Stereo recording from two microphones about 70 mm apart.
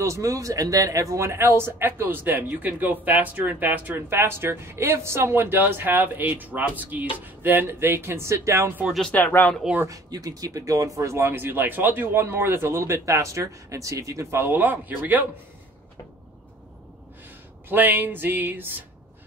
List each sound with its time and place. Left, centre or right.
0.0 s speech: right
9.1 s speech: left
9.8 s speech: right
14.4 s speech: right
17.6 s speech: right